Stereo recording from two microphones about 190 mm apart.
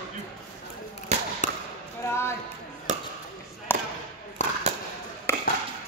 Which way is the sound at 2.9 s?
40° right (ahead or behind).